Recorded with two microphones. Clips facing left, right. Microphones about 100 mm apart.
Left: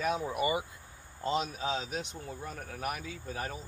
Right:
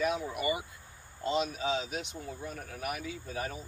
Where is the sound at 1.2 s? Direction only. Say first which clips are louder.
Right 1 dB; 35° left (ahead or behind).